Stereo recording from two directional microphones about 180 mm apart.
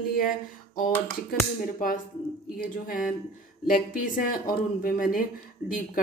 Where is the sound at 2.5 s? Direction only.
50° left (ahead or behind).